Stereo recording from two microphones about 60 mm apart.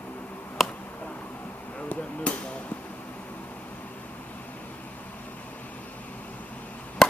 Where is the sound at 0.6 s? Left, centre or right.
Centre.